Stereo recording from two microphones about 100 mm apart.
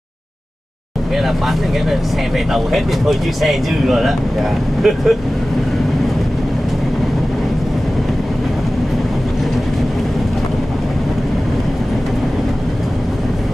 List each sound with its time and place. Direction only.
1.9 s speech: centre (ahead or behind)